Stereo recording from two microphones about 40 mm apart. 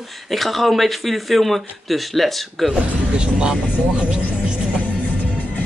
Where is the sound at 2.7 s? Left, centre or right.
Right.